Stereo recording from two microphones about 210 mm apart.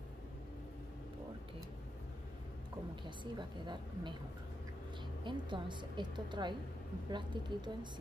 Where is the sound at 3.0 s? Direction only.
20° right (ahead or behind).